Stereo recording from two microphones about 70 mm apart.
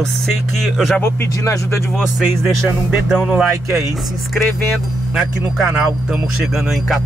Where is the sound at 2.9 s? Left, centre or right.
Centre.